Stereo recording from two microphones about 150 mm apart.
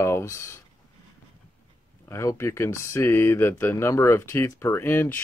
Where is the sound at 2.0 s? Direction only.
20° left (ahead or behind).